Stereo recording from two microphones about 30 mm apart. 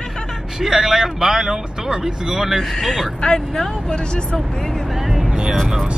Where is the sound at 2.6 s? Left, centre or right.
Centre.